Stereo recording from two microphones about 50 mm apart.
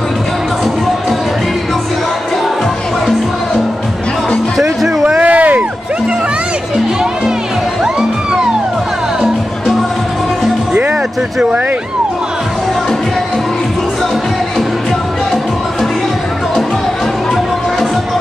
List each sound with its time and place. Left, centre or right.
4.6 s music: centre
5.2 s a sound: right
9.2 s music: centre